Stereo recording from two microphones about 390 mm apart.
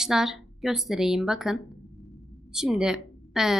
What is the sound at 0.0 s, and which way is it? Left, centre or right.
Speech, centre.